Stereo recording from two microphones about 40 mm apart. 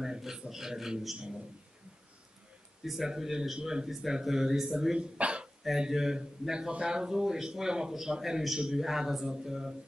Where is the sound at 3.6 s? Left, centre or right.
Right.